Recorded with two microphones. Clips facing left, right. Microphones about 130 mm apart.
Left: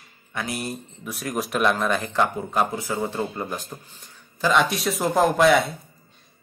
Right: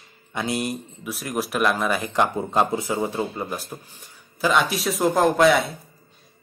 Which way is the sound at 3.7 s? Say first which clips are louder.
Right 2 dB; 5° right (ahead or behind).